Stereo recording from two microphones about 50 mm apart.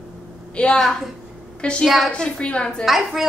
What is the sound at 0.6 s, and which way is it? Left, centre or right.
A woman's voice, left.